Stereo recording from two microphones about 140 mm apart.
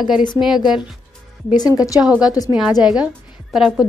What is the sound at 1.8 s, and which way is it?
Speech, 25° left (ahead or behind).